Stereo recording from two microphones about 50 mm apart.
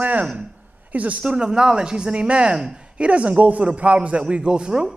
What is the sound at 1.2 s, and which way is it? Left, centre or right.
A man's voice, centre.